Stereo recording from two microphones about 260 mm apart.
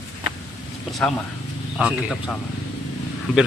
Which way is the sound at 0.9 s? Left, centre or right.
Centre.